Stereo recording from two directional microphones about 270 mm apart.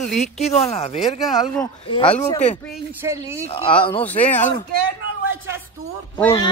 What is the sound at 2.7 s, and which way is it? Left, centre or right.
Speech, centre.